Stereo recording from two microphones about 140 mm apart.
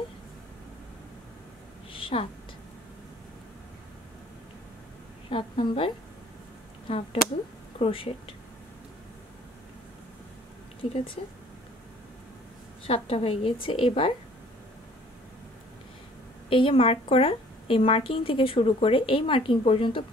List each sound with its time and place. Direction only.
1.9 s a sound: 40° left (ahead or behind)
5.3 s a woman's voice: 40° left (ahead or behind)
6.9 s a woman's voice: 40° left (ahead or behind)
10.8 s a woman's voice: 40° left (ahead or behind)
12.8 s a woman's voice: 45° left (ahead or behind)
16.4 s a woman's voice: 40° left (ahead or behind)